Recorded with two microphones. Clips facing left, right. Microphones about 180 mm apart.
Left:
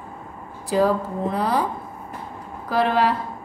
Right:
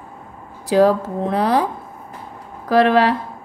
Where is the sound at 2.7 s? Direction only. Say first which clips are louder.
Right 6 dB; 90° right.